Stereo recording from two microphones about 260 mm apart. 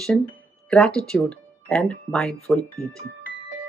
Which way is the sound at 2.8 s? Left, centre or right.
Left.